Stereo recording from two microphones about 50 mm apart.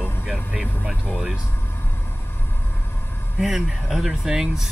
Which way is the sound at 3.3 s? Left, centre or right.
Centre.